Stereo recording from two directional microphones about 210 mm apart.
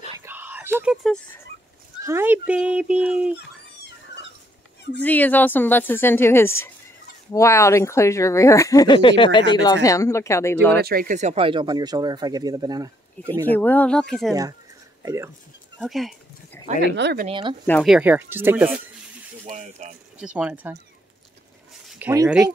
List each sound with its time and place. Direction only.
0.2 s a sound: 10° right (ahead or behind)
1.0 s speech: 5° left (ahead or behind)
2.0 s speech: 10° right (ahead or behind)
5.0 s speech: 10° left (ahead or behind)
10.8 s speech: 45° right (ahead or behind); by 13.3 s 15° right (ahead or behind)
13.5 s speech: 10° left (ahead or behind)
15.0 s speech: 15° right (ahead or behind)
15.8 s speech: centre (ahead or behind)
16.8 s speech: 55° right (ahead or behind)
17.3 s speech: 25° right (ahead or behind)
17.6 s speech: centre (ahead or behind)
19.4 s speech: 35° right (ahead or behind)
20.2 s speech: 5° right (ahead or behind)
21.8 s a sound: 5° right (ahead or behind)